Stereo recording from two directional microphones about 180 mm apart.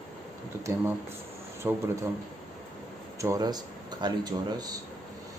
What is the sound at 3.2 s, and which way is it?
Speech, 20° right (ahead or behind).